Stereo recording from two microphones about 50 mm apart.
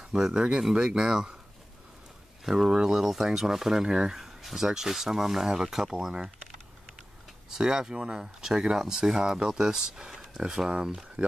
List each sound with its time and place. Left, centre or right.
0.0 s speech: centre
2.4 s speech: centre